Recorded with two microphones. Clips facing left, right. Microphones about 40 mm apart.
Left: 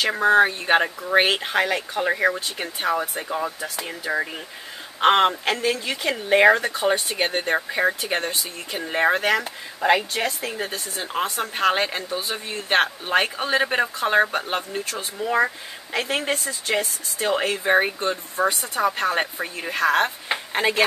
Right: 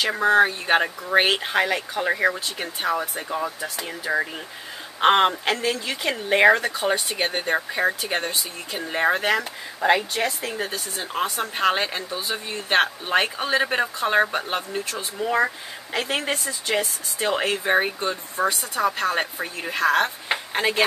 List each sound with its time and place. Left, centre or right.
0.0 s speech: centre
11.1 s a woman's voice: left
11.5 s speech: centre